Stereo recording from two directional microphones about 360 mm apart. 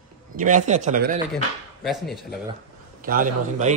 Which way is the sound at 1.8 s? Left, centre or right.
Centre.